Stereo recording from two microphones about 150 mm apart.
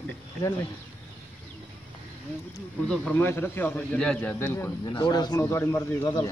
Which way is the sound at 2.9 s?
10° left (ahead or behind).